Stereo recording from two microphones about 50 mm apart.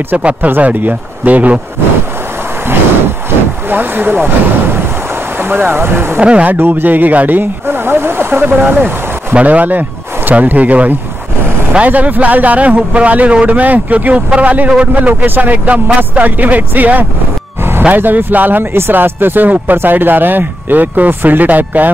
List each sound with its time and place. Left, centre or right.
0.2 s a man's voice: right
3.3 s speech: right
6.1 s speech: right
6.6 s speech: right
9.3 s a man's voice: right